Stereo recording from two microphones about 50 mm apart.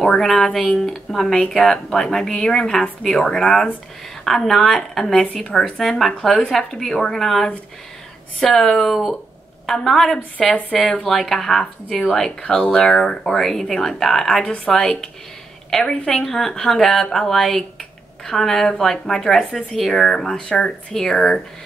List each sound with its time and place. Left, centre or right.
0.0 s speech: centre
5.6 s speech: centre
8.5 s speech: centre
12.5 s speech: centre
14.4 s speech: left
14.7 s speech: centre